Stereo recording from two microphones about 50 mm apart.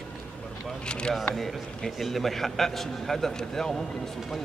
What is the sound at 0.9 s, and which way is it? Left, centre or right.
Speech, centre.